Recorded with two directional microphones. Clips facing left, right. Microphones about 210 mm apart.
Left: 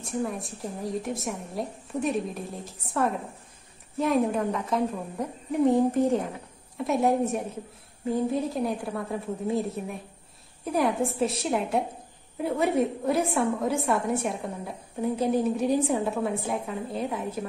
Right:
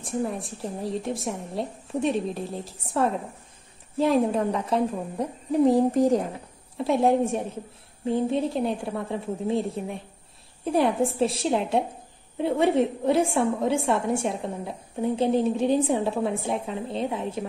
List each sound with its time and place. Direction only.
0.0 s a woman's voice: 30° right (ahead or behind)